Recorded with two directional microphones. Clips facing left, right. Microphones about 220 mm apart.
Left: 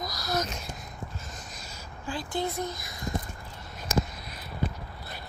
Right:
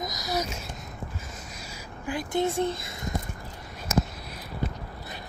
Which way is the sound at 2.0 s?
20° right (ahead or behind).